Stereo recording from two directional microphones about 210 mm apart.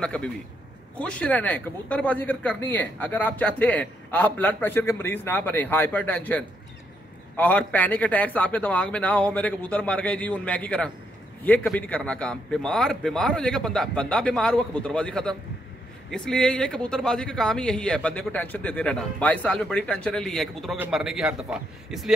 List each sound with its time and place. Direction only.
0.0 s speech: 5° left (ahead or behind)